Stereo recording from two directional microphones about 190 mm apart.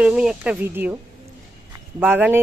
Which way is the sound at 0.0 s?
5° right (ahead or behind).